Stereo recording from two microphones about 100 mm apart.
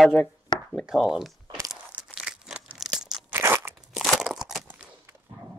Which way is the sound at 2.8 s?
5° right (ahead or behind).